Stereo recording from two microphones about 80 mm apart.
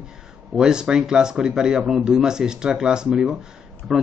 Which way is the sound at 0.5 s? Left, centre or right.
Centre.